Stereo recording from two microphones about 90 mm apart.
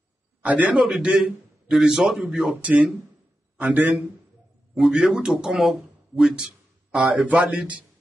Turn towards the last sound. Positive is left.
turn(degrees=-15)  # may be behind; listen again after turning